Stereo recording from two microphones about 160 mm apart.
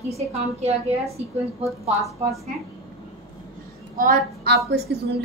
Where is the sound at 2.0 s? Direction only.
Centre (ahead or behind).